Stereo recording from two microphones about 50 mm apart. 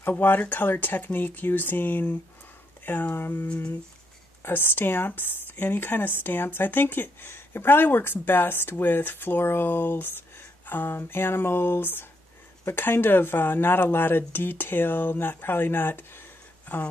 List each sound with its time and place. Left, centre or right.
0.0 s speech: left
3.4 s speech: left
4.4 s speech: left